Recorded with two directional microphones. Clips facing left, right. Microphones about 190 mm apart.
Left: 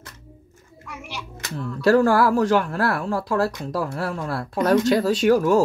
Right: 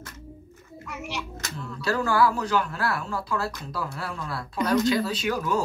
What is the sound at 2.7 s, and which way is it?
Speech, 55° left (ahead or behind).